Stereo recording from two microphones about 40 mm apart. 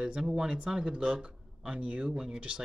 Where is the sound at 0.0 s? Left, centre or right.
Centre.